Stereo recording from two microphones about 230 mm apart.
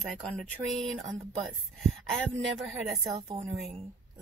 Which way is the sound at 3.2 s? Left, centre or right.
Right.